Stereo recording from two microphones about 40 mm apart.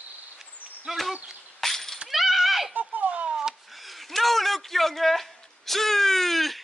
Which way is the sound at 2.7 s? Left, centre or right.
Right.